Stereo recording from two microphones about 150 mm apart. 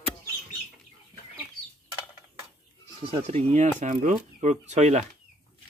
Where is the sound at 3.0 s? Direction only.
40° right (ahead or behind).